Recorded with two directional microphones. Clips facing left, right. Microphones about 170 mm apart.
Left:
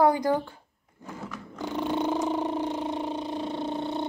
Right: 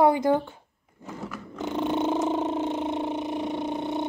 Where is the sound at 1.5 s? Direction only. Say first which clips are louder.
Right 2 dB; 20° right (ahead or behind).